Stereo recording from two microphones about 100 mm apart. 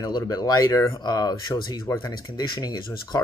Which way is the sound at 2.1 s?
45° left (ahead or behind).